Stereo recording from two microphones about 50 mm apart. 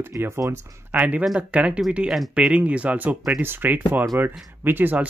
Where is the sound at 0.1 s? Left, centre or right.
Right.